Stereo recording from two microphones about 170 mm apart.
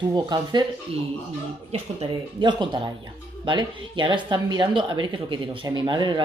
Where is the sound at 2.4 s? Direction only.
25° right (ahead or behind).